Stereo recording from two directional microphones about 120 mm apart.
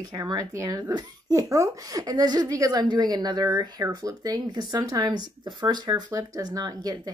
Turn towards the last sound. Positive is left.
turn(degrees=-30)  # may be behind; listen again after turning